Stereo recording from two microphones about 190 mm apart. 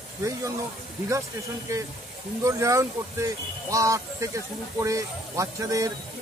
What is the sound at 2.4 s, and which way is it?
Speech, 15° right (ahead or behind).